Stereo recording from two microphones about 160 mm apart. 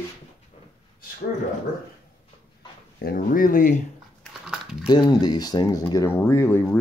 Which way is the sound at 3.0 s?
60° left (ahead or behind).